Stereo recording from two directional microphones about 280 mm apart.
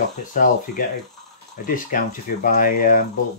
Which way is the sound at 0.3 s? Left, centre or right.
Left.